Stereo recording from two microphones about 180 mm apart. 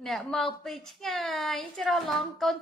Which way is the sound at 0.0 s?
Centre (ahead or behind).